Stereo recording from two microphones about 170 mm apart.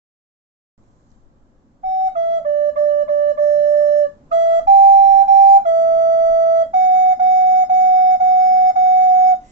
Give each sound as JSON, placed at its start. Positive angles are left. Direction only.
{"t": 2.1, "sound": "flute", "side_deg": -45}